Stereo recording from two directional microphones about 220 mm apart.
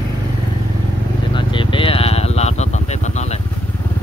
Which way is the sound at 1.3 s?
20° left (ahead or behind).